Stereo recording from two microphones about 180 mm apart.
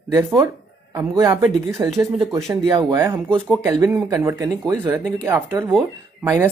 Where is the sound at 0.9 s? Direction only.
15° right (ahead or behind).